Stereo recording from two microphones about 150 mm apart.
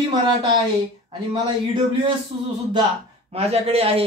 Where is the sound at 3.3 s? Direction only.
40° right (ahead or behind).